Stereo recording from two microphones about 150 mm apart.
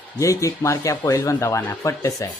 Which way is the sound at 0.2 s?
20° left (ahead or behind).